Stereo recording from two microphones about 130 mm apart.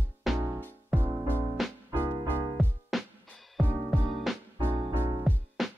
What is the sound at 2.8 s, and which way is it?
Music, centre (ahead or behind).